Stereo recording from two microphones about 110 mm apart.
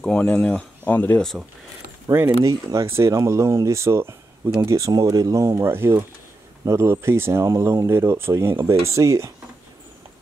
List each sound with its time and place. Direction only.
0.0 s speech: 10° left (ahead or behind)
2.1 s speech: 30° right (ahead or behind)